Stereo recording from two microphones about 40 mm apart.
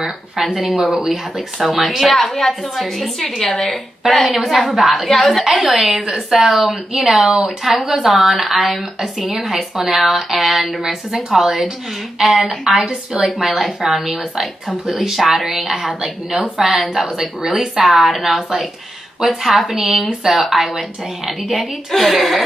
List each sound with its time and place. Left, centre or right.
0.6 s a woman's voice: centre
3.2 s a woman's voice: centre
10.8 s a woman's voice: centre